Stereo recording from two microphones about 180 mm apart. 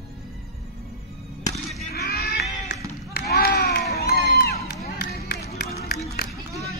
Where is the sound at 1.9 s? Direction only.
60° left (ahead or behind).